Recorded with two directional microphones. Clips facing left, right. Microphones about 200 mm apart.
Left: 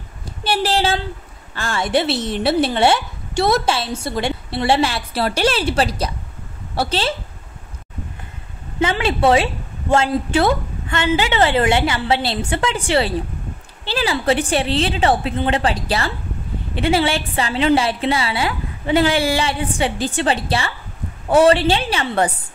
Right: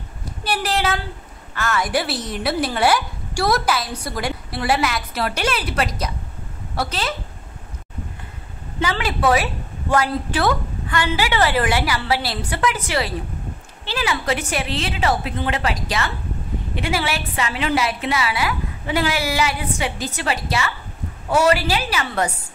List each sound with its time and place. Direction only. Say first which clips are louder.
0.2 s a sound: left 4 dB; 30° left (ahead or behind)
1.5 s a woman's voice: left 2 dB; 30° left (ahead or behind)
8.8 s a woman's voice: left 4 dB; 25° left (ahead or behind)